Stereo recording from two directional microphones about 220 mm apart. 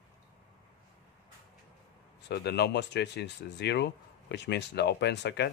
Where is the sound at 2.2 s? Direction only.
50° left (ahead or behind).